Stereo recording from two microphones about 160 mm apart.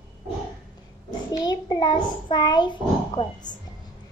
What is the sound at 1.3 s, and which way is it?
Child singing, 25° left (ahead or behind).